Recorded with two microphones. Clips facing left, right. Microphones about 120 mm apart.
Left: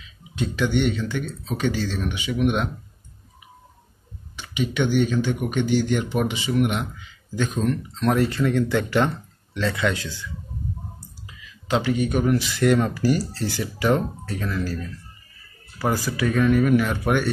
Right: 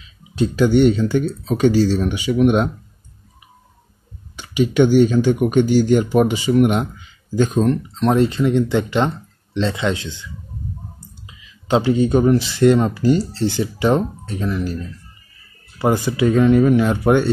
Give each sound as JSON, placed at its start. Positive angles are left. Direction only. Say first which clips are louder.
{"t": 0.4, "sound": "speech", "louder": "right 8 dB", "side_deg": -40}
{"t": 4.4, "sound": "speech", "louder": "right 9 dB", "side_deg": -40}